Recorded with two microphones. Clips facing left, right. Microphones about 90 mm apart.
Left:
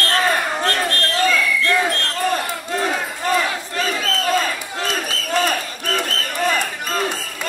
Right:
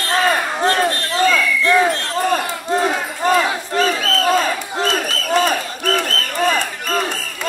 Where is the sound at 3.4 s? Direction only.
25° right (ahead or behind).